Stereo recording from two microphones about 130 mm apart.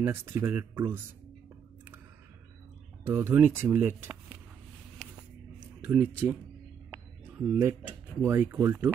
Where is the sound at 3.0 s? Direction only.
15° right (ahead or behind).